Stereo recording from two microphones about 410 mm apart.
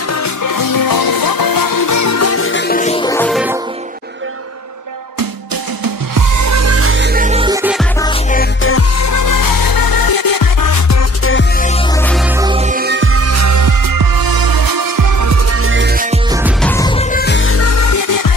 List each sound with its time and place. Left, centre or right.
0.1 s music: left; by 3.5 s centre
6.1 s music: right; by 7.8 s centre
8.0 s music: centre
8.6 s music: left; by 12.0 s centre
12.4 s music: centre
16.3 s music: centre
16.7 s music: centre; by 18.3 s left